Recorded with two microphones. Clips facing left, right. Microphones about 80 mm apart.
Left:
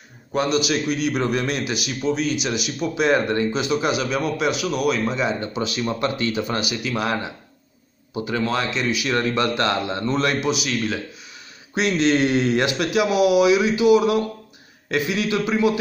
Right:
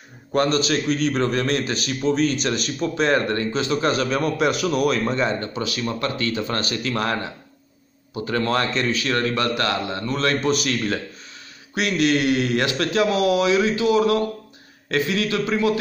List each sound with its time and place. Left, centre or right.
0.3 s a man's voice: centre
5.4 s a man's voice: left
8.4 s a man's voice: centre
11.7 s a man's voice: left